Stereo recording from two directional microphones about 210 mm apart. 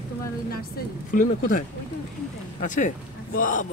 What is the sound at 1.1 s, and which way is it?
Speech, 40° left (ahead or behind).